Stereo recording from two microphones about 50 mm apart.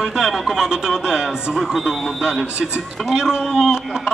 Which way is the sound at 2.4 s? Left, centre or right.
Right.